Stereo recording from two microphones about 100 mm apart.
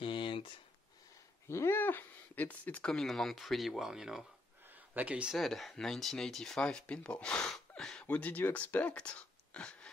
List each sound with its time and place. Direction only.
0.0 s a sound: 55° left (ahead or behind)
1.5 s speech: 25° left (ahead or behind); by 5.4 s 10° right (ahead or behind)
5.4 s speech: centre (ahead or behind)